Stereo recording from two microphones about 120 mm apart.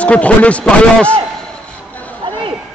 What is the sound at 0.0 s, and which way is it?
A man's voice, 10° left (ahead or behind).